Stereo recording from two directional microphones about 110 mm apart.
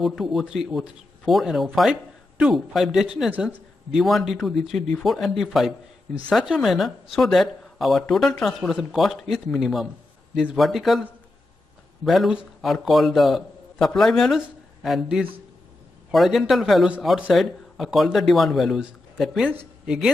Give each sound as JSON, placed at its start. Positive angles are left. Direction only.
{"t": 0.0, "sound": "a man's voice", "side_deg": 0}